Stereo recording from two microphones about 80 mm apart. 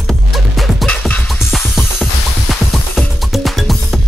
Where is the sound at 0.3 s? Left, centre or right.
Centre.